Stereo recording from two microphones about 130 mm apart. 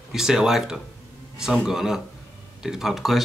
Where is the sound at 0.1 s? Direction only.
5° right (ahead or behind).